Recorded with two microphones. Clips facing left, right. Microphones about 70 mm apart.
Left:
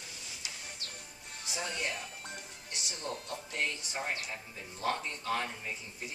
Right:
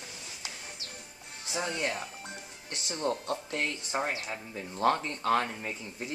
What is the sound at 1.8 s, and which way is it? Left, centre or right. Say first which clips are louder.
Speech: right 4 dB; right.